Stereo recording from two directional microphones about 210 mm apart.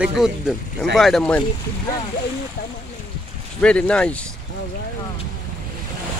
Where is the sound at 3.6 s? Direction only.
5° left (ahead or behind).